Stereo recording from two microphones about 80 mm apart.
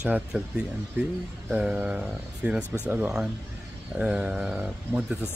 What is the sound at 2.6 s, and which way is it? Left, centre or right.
Speech, left.